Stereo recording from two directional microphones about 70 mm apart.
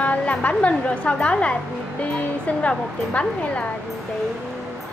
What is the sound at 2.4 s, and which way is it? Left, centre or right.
A woman's voice, centre.